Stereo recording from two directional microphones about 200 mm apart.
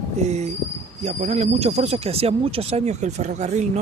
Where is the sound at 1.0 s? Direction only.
35° right (ahead or behind).